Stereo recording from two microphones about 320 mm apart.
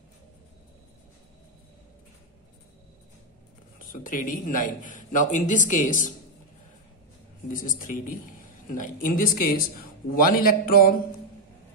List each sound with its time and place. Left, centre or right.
3.9 s speech: left
7.4 s speech: left